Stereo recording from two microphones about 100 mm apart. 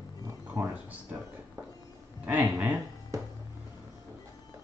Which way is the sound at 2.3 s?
20° right (ahead or behind).